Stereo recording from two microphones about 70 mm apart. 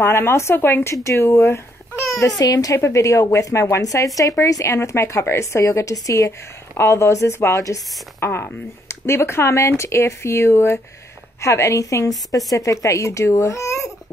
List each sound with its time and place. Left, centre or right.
0.0 s speech: left
0.9 s speech: left
2.3 s a woman's voice: left
8.3 s speech: left
11.4 s a woman's voice: left